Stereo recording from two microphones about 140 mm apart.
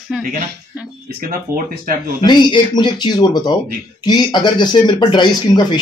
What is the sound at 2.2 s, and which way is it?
Speech, 30° left (ahead or behind).